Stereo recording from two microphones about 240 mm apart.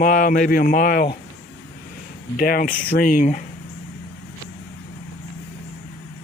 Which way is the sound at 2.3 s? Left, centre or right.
Left.